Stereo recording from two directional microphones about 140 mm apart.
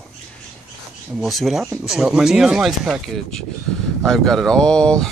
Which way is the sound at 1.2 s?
Centre (ahead or behind).